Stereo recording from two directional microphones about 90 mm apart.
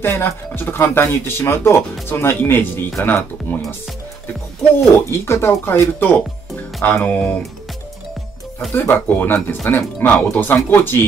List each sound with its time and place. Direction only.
0.0 s speech: 25° left (ahead or behind)
5.0 s speech: 30° left (ahead or behind)
8.7 s speech: 25° left (ahead or behind)